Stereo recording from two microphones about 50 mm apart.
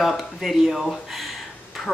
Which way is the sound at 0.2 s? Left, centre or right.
Centre.